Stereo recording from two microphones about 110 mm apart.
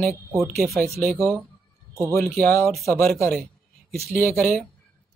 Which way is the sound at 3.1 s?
5° left (ahead or behind).